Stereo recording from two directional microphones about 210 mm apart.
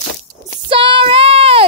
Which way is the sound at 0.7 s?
25° right (ahead or behind).